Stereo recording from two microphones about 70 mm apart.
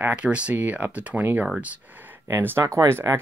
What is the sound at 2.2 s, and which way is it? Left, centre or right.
Speech, right.